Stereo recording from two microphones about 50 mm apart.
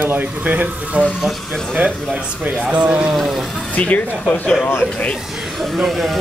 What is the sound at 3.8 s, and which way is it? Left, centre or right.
Speech, left.